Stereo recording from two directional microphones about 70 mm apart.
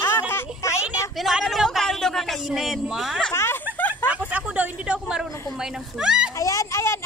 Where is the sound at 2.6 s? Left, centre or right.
Centre.